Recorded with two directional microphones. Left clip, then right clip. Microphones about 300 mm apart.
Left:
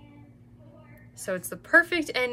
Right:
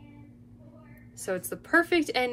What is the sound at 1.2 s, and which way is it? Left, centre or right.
A woman's voice, centre.